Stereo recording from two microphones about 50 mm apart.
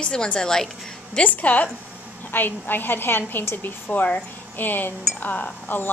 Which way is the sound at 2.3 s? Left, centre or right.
Left.